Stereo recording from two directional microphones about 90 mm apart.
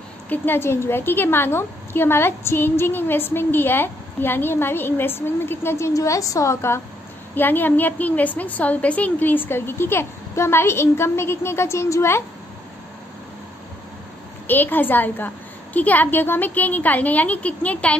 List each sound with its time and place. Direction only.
0.3 s a woman's voice: 25° left (ahead or behind)
14.5 s a woman's voice: 20° left (ahead or behind)